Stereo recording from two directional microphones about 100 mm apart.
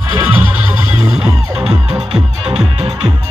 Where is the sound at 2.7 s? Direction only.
80° right.